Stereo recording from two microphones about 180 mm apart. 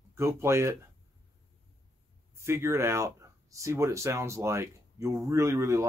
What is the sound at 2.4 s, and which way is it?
Speech, 15° right (ahead or behind).